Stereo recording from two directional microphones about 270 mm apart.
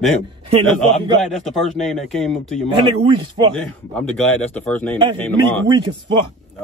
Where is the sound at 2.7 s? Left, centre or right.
Centre.